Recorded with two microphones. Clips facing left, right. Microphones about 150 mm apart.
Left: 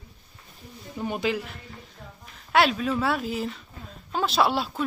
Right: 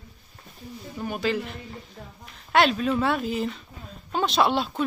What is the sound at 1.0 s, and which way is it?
Speech, 20° left (ahead or behind).